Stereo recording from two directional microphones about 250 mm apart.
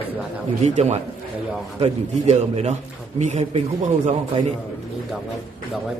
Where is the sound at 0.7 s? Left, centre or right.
Right.